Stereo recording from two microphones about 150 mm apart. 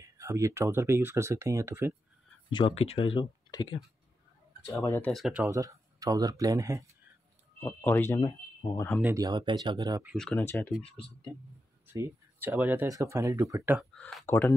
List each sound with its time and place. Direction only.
0.0 s speech: 20° right (ahead or behind)
2.5 s speech: 35° left (ahead or behind)
4.6 s speech: 20° left (ahead or behind)
5.0 s speech: centre (ahead or behind)
5.5 s speech: 20° right (ahead or behind)
7.6 s speech: 15° left (ahead or behind)
9.0 s speech: 20° right (ahead or behind)
10.1 s speech: 5° left (ahead or behind)
10.8 s speech: 40° left (ahead or behind)
11.9 s speech: 15° right (ahead or behind)
13.7 s speech: 5° left (ahead or behind)
14.2 s speech: 15° left (ahead or behind)